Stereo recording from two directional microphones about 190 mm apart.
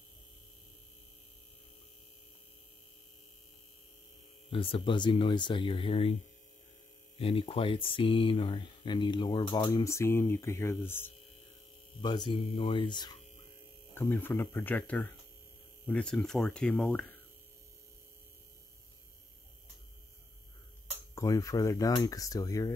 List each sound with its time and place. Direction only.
4.5 s speech: 30° left (ahead or behind)
7.2 s speech: 30° left (ahead or behind); by 11.1 s 10° left (ahead or behind)
12.0 s speech: 25° left (ahead or behind)
13.9 s speech: 10° left (ahead or behind)
15.9 s hum: 5° left (ahead or behind)
21.1 s speech: 15° left (ahead or behind)